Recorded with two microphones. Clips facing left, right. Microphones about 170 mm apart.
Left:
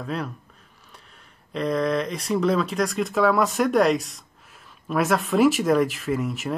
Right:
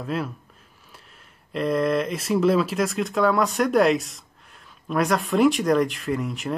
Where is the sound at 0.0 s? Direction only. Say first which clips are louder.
Right 2 dB; centre (ahead or behind).